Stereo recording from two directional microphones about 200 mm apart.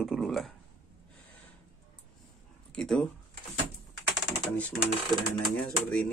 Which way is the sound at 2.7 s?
5° left (ahead or behind).